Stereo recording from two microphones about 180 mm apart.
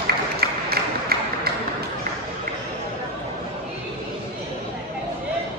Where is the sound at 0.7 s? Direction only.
60° right (ahead or behind).